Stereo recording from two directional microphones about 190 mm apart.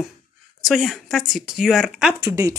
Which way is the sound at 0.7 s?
Centre (ahead or behind).